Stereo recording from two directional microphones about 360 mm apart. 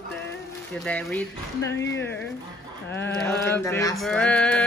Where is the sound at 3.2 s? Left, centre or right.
Centre.